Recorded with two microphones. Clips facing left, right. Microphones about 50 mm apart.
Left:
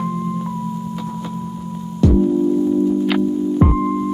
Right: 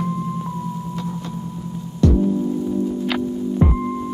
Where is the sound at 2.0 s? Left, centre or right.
Centre.